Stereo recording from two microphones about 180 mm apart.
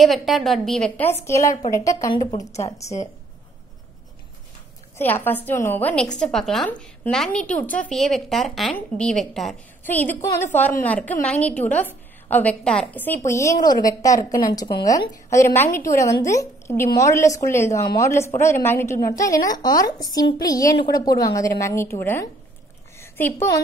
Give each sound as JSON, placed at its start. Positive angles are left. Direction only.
{"t": 0.0, "sound": "a woman's voice", "side_deg": 0}
{"t": 4.9, "sound": "a woman's voice", "side_deg": 10}
{"t": 22.9, "sound": "a sound", "side_deg": 15}